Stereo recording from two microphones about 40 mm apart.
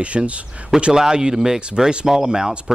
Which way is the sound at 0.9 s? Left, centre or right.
Centre.